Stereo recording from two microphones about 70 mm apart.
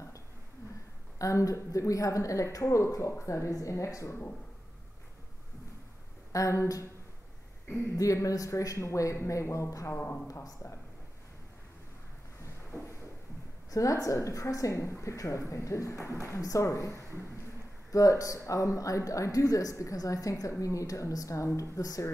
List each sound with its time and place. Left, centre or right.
1.1 s speech: left
6.3 s speech: left
8.0 s speech: left
13.7 s speech: left